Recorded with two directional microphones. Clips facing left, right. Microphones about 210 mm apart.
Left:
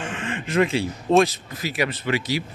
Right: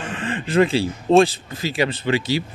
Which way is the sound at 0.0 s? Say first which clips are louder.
Right 3 dB; 35° right (ahead or behind).